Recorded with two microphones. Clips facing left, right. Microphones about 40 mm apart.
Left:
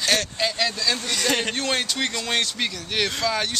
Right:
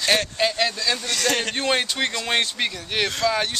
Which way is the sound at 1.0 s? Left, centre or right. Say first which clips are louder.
Right 1 dB; centre.